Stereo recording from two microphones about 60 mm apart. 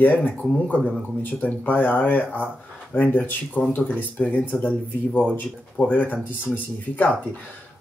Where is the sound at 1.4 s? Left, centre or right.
Left.